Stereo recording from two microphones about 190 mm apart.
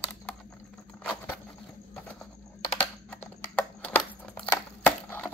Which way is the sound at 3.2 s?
10° left (ahead or behind).